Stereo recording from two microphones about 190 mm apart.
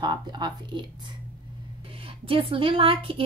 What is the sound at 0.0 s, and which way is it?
Speech, 20° right (ahead or behind).